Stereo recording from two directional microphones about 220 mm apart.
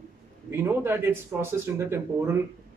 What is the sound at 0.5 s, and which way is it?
Speech, 10° right (ahead or behind).